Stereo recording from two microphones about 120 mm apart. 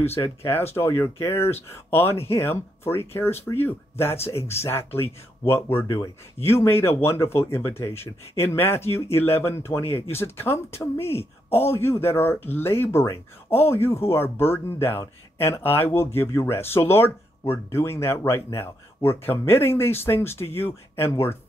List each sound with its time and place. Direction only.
0.0 s speech: 20° left (ahead or behind)